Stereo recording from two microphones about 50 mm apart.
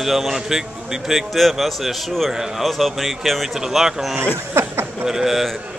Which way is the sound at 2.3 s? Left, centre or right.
Centre.